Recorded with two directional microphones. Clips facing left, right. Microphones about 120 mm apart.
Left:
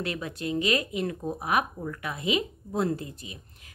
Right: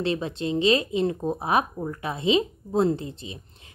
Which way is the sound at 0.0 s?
25° right (ahead or behind).